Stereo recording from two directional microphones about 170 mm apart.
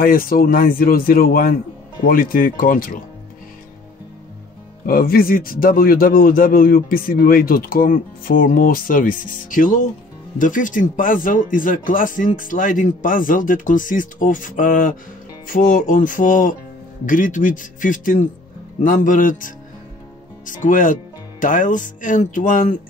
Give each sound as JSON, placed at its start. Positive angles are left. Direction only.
{"t": 0.0, "sound": "a man's voice", "side_deg": 60}
{"t": 4.8, "sound": "a man's voice", "side_deg": 60}